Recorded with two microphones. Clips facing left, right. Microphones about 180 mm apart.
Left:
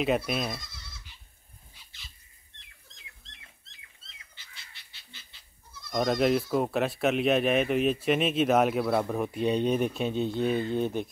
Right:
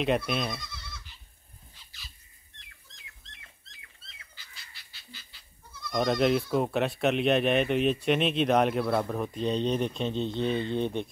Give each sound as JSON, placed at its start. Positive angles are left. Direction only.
{"t": 0.3, "sound": "speech", "side_deg": 0}
{"t": 0.6, "sound": "goat", "side_deg": -60}
{"t": 5.9, "sound": "speech", "side_deg": 0}